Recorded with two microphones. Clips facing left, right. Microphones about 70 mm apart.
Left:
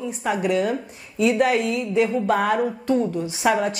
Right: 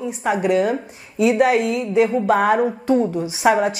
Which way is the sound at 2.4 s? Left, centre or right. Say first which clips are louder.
Right 4 dB; right.